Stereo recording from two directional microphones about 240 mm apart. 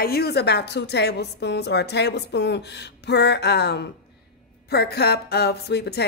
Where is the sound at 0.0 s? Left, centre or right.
Left.